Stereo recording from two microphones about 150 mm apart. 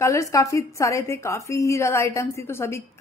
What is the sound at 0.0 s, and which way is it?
A woman's voice, 20° left (ahead or behind).